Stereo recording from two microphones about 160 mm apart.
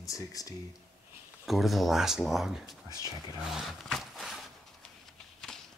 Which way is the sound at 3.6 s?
Centre (ahead or behind).